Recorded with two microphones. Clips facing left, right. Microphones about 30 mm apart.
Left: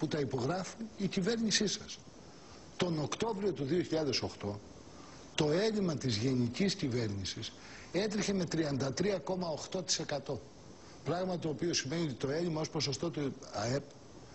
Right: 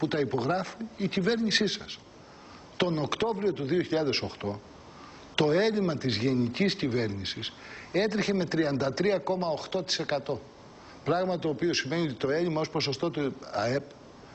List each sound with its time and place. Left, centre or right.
0.0 s a man's voice: right